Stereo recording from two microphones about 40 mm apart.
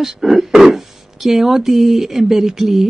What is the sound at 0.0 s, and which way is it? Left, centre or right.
Speech, centre.